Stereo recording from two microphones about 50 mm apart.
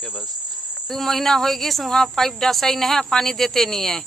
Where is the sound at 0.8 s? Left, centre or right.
Centre.